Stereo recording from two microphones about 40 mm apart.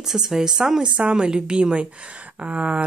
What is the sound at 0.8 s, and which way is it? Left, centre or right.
A woman's voice, right.